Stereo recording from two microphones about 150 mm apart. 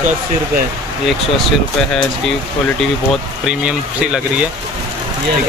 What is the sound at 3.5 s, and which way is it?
Speech, 5° right (ahead or behind).